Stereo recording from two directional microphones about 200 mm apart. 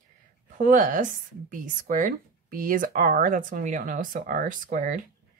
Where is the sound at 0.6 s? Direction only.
40° right (ahead or behind).